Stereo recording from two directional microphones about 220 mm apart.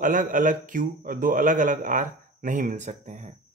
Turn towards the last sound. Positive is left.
turn(degrees=-30)  # may be behind; listen again after turning